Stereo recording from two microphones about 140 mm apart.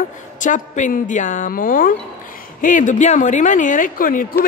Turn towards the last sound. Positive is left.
turn(degrees=80)